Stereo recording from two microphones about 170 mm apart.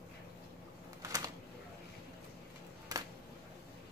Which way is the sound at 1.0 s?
20° right (ahead or behind).